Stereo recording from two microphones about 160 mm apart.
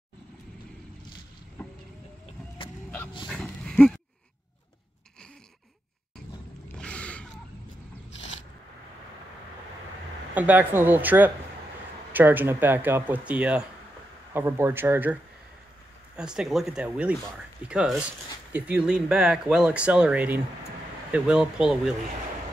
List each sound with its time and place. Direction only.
3.3 s dog: 5° left (ahead or behind)
6.8 s gasp: 5° left (ahead or behind)
10.3 s speech: 10° right (ahead or behind)
16.2 s speech: 5° right (ahead or behind)